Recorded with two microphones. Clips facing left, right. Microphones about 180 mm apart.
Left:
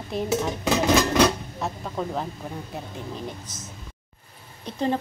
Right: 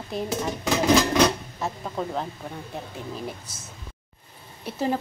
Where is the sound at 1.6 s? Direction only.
Centre (ahead or behind).